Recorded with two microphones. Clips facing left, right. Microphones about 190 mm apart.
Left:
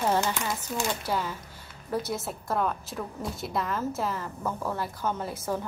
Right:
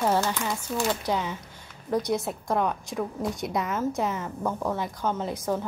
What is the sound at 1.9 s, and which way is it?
A woman's voice, 15° right (ahead or behind).